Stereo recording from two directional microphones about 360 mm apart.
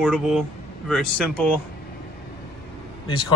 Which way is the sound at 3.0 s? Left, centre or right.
Centre.